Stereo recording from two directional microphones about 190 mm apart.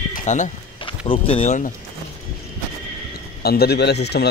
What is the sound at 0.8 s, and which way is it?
Speech, 25° left (ahead or behind).